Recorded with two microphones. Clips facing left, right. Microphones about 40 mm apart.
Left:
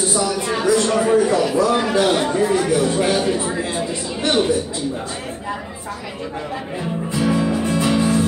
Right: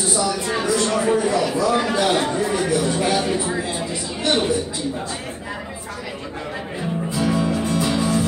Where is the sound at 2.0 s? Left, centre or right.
Centre.